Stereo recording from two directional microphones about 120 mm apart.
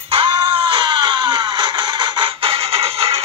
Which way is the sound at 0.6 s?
40° right (ahead or behind).